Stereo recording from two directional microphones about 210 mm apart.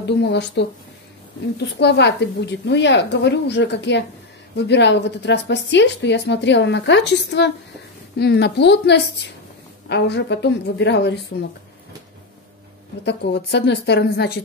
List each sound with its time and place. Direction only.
0.0 s a woman's voice: 55° left (ahead or behind)
13.0 s a woman's voice: 55° left (ahead or behind)